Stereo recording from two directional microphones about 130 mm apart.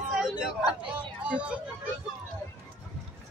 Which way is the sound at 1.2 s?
10° right (ahead or behind).